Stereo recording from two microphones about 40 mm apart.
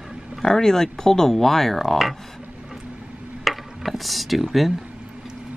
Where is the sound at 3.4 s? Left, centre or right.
Centre.